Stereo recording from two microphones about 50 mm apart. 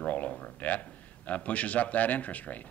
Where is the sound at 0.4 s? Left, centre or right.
Left.